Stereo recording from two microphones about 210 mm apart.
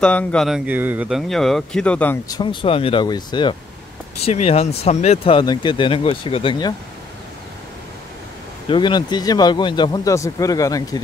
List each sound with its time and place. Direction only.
0.0 s speech: 5° left (ahead or behind)
0.7 s speech: 10° right (ahead or behind); by 6.7 s 25° left (ahead or behind)
8.6 s speech: 20° left (ahead or behind)